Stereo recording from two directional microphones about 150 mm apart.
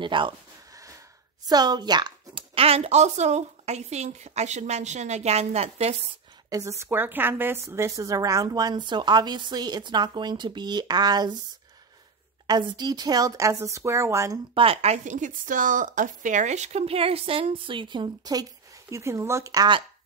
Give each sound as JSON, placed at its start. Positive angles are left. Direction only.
{"t": 0.0, "sound": "speech", "side_deg": -35}
{"t": 1.5, "sound": "speech", "side_deg": -25}
{"t": 6.8, "sound": "a woman's voice", "side_deg": -15}
{"t": 12.4, "sound": "a woman's voice", "side_deg": -30}
{"t": 14.5, "sound": "a woman's voice", "side_deg": -40}